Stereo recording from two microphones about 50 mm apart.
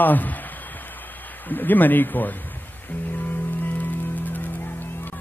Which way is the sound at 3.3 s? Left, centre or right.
Left.